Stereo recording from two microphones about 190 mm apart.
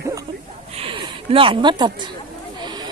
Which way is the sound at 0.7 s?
30° right (ahead or behind).